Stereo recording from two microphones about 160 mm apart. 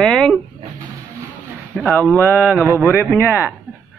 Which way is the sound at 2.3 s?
5° right (ahead or behind).